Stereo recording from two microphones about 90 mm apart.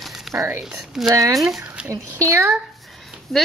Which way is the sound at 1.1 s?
40° right (ahead or behind).